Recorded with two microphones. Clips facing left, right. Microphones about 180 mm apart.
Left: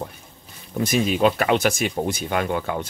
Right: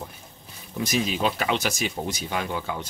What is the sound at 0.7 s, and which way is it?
Speech, 55° left (ahead or behind).